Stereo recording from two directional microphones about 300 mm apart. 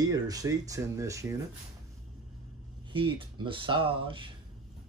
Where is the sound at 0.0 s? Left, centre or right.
Centre.